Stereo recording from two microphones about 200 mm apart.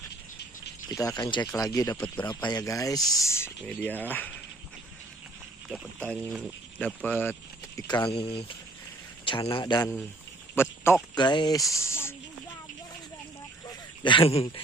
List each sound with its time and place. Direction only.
0.8 s speech: 20° left (ahead or behind)
5.7 s speech: 5° left (ahead or behind)
7.8 s speech: 20° left (ahead or behind)
11.1 s speech: 20° left (ahead or behind)
11.7 s snake: 15° left (ahead or behind)
13.7 s a sound: 25° left (ahead or behind)